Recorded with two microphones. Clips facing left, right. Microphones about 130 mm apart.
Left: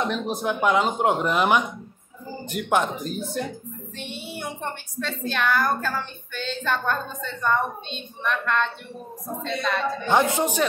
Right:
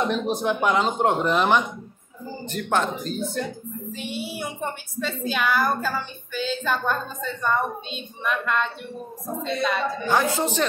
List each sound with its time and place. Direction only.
0.0 s a woman's voice: centre (ahead or behind)
3.9 s a woman's voice: 5° right (ahead or behind)
10.0 s speech: 20° left (ahead or behind)